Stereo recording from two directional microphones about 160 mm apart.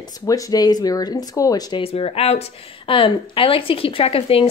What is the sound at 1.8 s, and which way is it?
A woman's voice, 35° left (ahead or behind).